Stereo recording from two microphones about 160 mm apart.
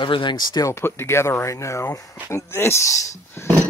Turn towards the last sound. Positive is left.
turn(degrees=20)  # may be behind; listen again after turning